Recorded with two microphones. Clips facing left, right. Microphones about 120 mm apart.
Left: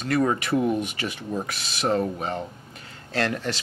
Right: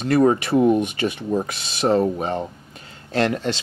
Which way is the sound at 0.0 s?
30° right (ahead or behind).